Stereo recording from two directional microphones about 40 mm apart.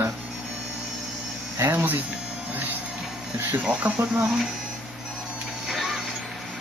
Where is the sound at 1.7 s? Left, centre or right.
Right.